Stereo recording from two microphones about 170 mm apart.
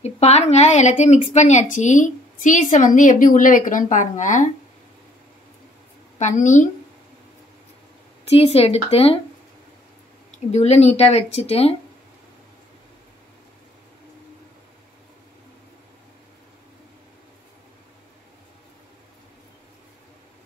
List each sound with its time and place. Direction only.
0.0 s a woman's voice: 40° left (ahead or behind)
6.1 s a woman's voice: 45° left (ahead or behind)
8.3 s speech: 35° left (ahead or behind)
10.5 s speech: 40° left (ahead or behind)